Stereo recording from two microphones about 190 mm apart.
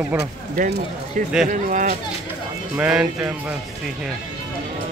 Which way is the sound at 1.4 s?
40° right (ahead or behind).